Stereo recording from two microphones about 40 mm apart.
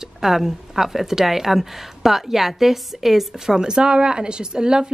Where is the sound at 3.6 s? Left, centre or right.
Centre.